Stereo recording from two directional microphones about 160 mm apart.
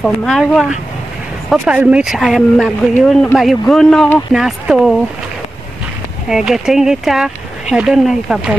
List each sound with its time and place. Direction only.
0.0 s speech: 5° left (ahead or behind)
6.2 s speech: 5° right (ahead or behind)